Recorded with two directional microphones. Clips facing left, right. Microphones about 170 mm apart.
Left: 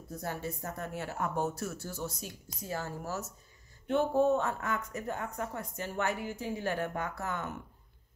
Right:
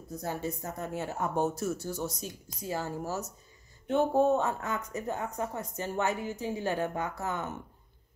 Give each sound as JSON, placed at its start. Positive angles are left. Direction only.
{"t": 0.2, "sound": "a woman's voice", "side_deg": -20}